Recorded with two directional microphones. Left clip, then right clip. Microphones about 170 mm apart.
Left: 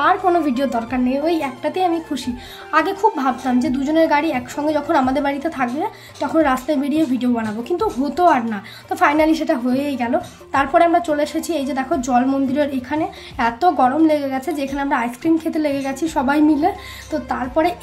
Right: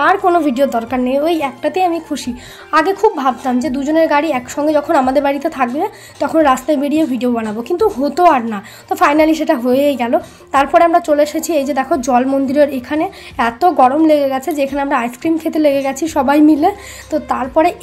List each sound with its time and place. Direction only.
0.0 s a woman's voice: 35° right (ahead or behind)